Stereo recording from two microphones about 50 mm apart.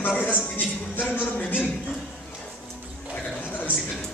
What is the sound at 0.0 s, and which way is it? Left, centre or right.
A man's voice, left.